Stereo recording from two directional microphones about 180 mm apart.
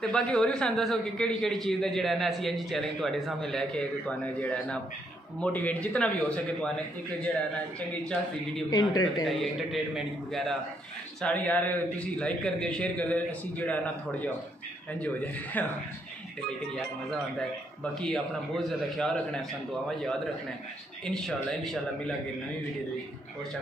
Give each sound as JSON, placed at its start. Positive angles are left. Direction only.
{"t": 0.0, "sound": "a man's voice", "side_deg": 5}
{"t": 8.6, "sound": "speech", "side_deg": 20}
{"t": 9.2, "sound": "a man's voice", "side_deg": 0}
{"t": 15.6, "sound": "a man's voice", "side_deg": 10}
{"t": 17.9, "sound": "a man's voice", "side_deg": 5}
{"t": 21.0, "sound": "a man's voice", "side_deg": 0}